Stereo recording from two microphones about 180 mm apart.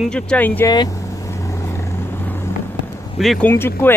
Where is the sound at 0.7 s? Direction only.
20° left (ahead or behind).